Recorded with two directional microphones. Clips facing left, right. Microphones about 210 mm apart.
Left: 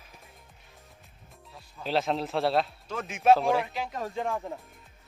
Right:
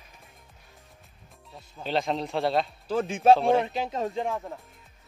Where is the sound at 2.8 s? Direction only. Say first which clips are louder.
Right 4 dB; 30° right (ahead or behind).